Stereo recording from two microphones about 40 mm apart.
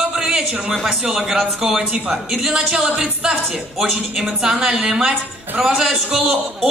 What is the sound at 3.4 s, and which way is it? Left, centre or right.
Speech, centre.